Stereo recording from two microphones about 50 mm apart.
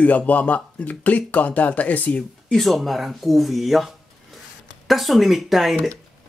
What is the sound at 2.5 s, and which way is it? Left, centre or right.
Speech, centre.